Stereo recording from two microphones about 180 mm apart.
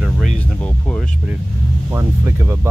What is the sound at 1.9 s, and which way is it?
Speech, 15° right (ahead or behind).